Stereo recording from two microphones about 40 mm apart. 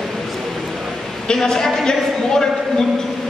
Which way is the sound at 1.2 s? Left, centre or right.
Centre.